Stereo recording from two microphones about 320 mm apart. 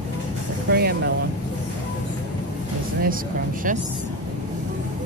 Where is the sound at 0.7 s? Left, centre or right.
Right.